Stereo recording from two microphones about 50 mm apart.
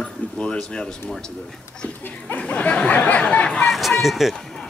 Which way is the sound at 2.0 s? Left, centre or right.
Left.